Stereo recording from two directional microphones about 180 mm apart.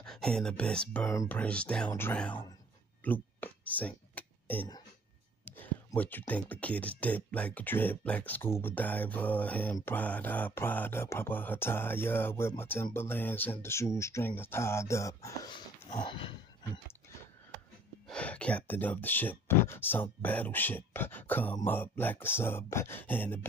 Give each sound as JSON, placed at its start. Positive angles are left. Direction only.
{"t": 0.0, "sound": "speech", "side_deg": 5}
{"t": 1.0, "sound": "speech", "side_deg": 15}
{"t": 3.0, "sound": "a sound", "side_deg": 10}
{"t": 5.4, "sound": "speech", "side_deg": 10}
{"t": 18.0, "sound": "speech", "side_deg": 5}